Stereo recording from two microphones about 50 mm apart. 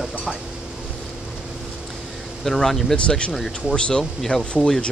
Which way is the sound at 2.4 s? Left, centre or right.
Centre.